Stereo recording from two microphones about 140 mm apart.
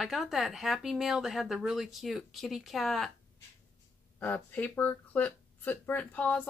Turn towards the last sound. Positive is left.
turn(degrees=10)  # may be behind; listen again after turning